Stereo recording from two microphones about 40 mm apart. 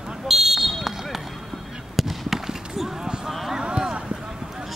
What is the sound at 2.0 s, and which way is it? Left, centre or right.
Fireworks, centre.